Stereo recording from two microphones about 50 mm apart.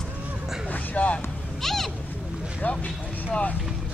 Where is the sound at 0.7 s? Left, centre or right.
Left.